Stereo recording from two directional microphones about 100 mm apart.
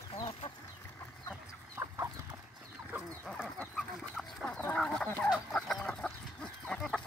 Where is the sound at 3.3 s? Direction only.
10° left (ahead or behind).